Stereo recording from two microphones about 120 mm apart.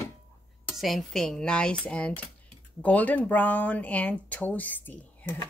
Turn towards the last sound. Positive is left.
turn(degrees=15)  # may be behind; listen again after turning